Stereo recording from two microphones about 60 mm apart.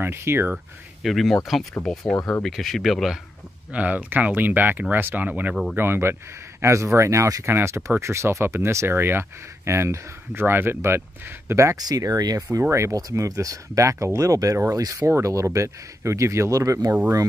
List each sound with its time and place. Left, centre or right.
0.0 s speech: right
1.0 s speech: centre
3.7 s speech: right
5.8 s speech: right
6.6 s speech: right
7.4 s speech: right
9.7 s speech: right
11.7 s speech: right
12.9 s speech: right
14.7 s speech: right
15.0 s speech: right